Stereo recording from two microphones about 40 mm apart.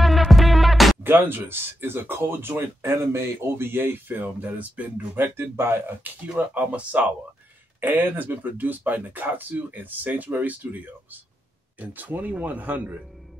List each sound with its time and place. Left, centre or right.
0.0 s music: centre
1.0 s speech: right
4.2 s speech: right
5.1 s speech: right
6.2 s speech: right
8.0 s speech: right